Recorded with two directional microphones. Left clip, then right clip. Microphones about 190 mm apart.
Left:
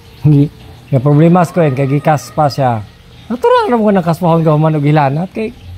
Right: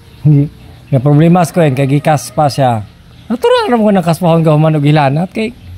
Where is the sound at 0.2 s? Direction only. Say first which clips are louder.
Left 1 dB; 20° left (ahead or behind).